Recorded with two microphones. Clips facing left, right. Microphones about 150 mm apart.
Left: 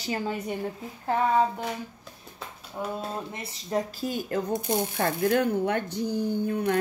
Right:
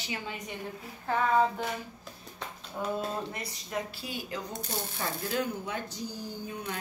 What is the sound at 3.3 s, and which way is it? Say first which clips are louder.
Speech: left 6 dB; 25° left (ahead or behind).